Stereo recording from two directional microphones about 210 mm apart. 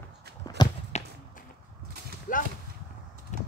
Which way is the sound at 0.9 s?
30° left (ahead or behind).